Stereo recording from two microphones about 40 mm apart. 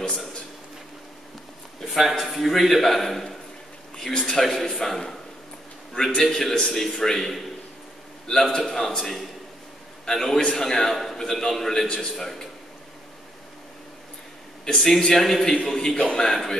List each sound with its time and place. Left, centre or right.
1.9 s a man's voice: centre
3.9 s a man's voice: centre
5.9 s a man's voice: centre
14.6 s a man's voice: centre